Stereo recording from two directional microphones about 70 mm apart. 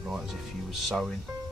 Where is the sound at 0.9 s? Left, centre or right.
Centre.